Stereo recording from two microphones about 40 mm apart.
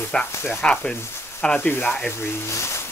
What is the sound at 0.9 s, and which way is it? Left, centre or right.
Sizzle, left.